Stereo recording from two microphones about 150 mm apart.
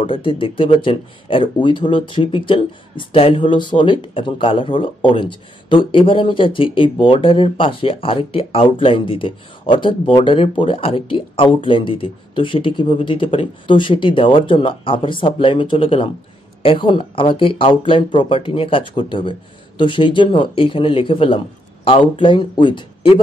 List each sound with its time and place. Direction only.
0.0 s speech: 35° left (ahead or behind)